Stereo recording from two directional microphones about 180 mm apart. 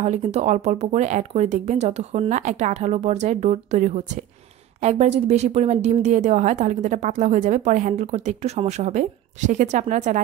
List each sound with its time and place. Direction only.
0.0 s a woman's voice: 40° right (ahead or behind)